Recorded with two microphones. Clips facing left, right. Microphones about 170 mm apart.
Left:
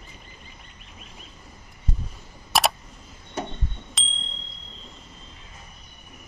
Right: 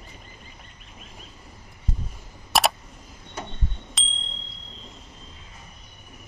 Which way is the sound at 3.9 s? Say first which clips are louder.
Even; centre (ahead or behind).